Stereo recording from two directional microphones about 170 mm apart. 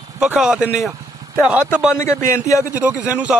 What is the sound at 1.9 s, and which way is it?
Speech, 15° left (ahead or behind).